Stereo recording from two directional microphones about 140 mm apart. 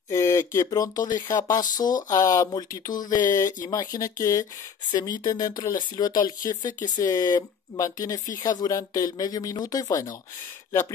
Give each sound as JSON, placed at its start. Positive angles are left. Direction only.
{"t": 0.1, "sound": "speech", "side_deg": 20}